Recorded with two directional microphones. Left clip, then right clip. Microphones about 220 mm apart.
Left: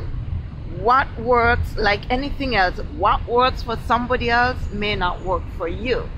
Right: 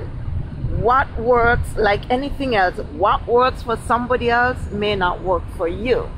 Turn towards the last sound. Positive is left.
turn(degrees=-5)  # may be behind; listen again after turning